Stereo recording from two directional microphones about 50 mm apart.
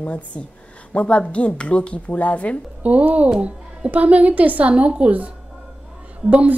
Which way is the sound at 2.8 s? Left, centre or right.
Right.